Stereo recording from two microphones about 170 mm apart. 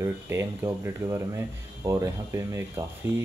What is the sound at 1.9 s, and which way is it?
Speech, 15° right (ahead or behind).